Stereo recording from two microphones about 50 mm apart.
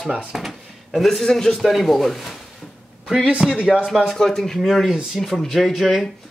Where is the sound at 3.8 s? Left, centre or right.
Centre.